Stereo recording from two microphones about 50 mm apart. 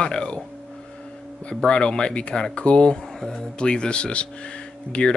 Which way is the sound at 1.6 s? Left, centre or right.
Centre.